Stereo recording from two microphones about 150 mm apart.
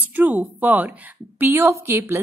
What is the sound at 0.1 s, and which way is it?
A woman's voice, 10° right (ahead or behind).